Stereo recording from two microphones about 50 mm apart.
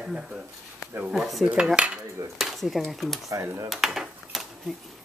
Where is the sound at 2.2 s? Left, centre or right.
Right.